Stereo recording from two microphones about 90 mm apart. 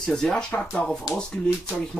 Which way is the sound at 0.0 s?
10° left (ahead or behind).